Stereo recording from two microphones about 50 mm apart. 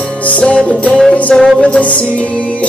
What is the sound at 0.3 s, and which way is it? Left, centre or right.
Music, left.